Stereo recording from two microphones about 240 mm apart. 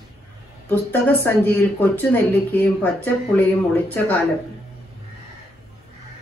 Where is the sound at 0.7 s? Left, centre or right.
Centre.